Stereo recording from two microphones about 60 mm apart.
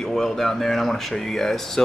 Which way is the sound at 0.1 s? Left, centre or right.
Centre.